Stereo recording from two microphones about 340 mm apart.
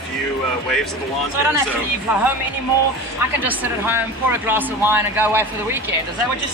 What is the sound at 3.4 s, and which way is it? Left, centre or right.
A man's voice, centre.